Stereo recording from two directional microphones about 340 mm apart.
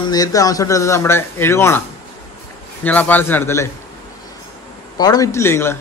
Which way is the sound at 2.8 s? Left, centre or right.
Centre.